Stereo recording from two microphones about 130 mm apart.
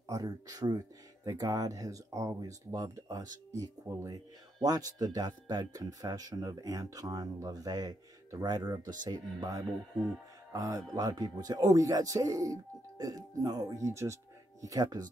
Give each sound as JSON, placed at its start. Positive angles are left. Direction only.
{"t": 0.0, "sound": "speech", "side_deg": -30}